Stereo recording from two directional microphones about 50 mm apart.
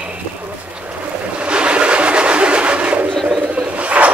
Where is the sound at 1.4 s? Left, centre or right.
Right.